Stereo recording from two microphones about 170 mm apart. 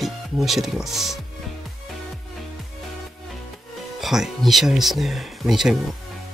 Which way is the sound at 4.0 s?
Centre (ahead or behind).